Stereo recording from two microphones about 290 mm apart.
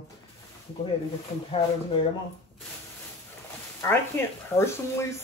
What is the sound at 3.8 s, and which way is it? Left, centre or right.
Speech, centre.